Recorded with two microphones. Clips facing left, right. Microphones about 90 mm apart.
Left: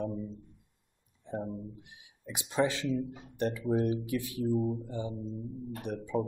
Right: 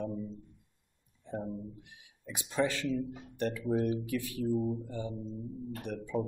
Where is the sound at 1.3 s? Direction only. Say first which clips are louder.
Left 1 dB; 20° left (ahead or behind).